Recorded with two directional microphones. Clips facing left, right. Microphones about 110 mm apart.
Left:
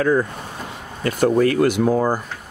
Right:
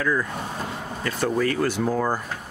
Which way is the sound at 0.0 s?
45° left (ahead or behind).